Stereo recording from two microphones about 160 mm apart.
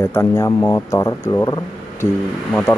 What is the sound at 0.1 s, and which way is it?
Speech, 15° left (ahead or behind).